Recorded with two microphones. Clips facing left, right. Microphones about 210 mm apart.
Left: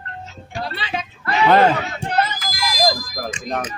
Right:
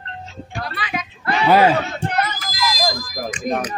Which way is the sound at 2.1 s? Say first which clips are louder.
Left 6 dB; 30° left (ahead or behind).